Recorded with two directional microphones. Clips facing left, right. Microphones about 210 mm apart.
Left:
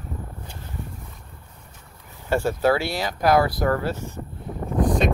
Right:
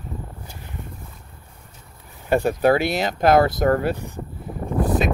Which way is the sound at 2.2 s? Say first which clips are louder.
Right 3 dB; 15° right (ahead or behind).